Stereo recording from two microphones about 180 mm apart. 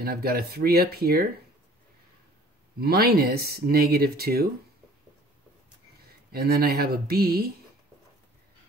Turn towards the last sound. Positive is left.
turn(degrees=-55)  # may be behind; listen again after turning